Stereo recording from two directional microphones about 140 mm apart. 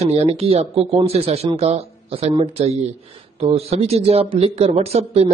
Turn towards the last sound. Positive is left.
turn(degrees=-45)  # may be behind; listen again after turning